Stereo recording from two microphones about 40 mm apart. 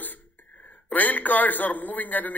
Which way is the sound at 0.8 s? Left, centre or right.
Left.